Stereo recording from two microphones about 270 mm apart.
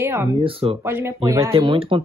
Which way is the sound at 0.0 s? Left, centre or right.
Centre.